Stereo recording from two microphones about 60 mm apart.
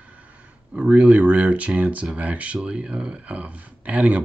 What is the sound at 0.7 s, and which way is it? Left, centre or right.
Speech, centre.